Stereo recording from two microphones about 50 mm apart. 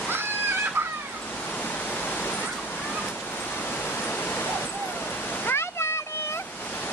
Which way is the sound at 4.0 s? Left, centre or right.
Left.